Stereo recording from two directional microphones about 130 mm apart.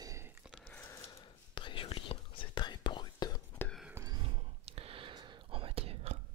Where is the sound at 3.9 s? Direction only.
30° right (ahead or behind).